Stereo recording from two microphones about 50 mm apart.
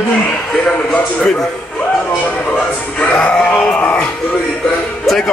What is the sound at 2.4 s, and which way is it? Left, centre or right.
Speech, left.